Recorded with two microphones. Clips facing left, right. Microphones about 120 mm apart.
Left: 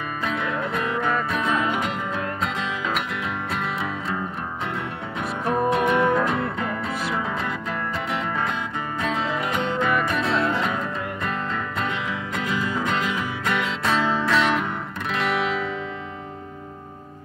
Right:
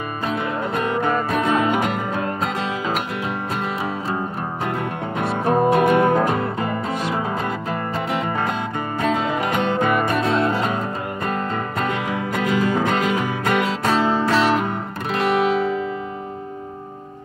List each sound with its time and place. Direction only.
0.2 s music: 45° right (ahead or behind)
1.4 s music: 65° right (ahead or behind)
5.7 s music: 55° right (ahead or behind)
9.0 s music: 60° right (ahead or behind); by 15.8 s 45° right (ahead or behind)